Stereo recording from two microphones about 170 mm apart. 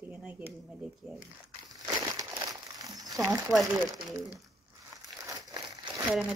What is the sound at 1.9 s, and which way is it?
Crumpling, 20° right (ahead or behind).